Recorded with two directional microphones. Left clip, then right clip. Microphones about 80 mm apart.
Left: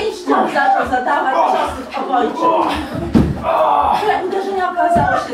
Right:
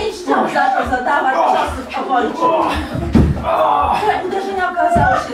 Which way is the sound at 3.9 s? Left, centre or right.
Centre.